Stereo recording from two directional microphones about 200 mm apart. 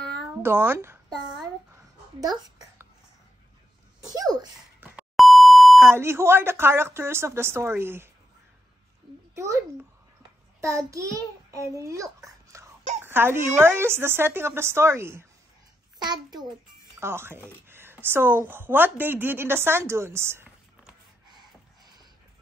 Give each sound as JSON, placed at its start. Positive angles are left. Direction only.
{"t": 0.4, "sound": "speech", "side_deg": -10}
{"t": 4.1, "sound": "speech", "side_deg": -20}
{"t": 4.8, "sound": "beep", "side_deg": -5}
{"t": 5.8, "sound": "speech", "side_deg": -10}
{"t": 9.3, "sound": "a child's voice", "side_deg": -15}
{"t": 10.6, "sound": "child singing", "side_deg": -15}
{"t": 11.8, "sound": "a child's voice", "side_deg": -15}
{"t": 21.3, "sound": "a sound", "side_deg": -20}